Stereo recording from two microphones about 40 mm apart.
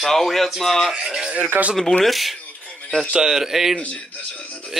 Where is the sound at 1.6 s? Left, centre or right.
Right.